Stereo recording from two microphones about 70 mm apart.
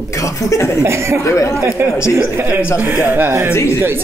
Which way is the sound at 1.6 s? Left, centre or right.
Right.